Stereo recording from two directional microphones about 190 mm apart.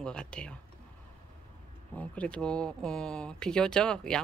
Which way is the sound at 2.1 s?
5° left (ahead or behind).